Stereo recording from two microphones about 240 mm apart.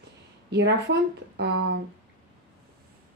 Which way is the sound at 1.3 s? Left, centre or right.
Right.